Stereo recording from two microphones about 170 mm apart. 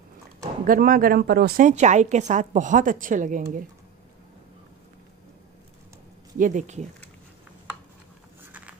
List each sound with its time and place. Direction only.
0.7 s speech: 55° right (ahead or behind)
1.6 s a woman's voice: 45° right (ahead or behind)
6.3 s a woman's voice: 50° right (ahead or behind)
8.4 s a sound: 10° right (ahead or behind)